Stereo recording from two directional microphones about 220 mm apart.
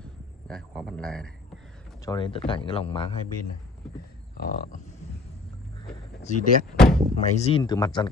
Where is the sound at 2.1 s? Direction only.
25° left (ahead or behind).